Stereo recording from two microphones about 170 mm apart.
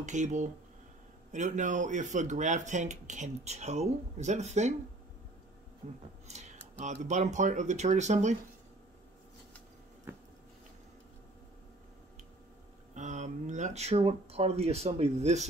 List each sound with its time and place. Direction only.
0.0 s speech: 45° right (ahead or behind)
5.8 s speech: 45° right (ahead or behind)
6.2 s a sound: 40° right (ahead or behind)
6.8 s speech: 45° right (ahead or behind)
10.1 s biting: 15° right (ahead or behind)
12.9 s speech: 45° right (ahead or behind)